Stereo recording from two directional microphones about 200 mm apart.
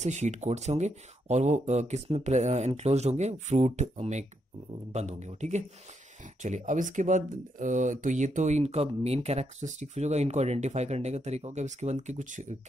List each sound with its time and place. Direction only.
0.0 s speech: 35° right (ahead or behind)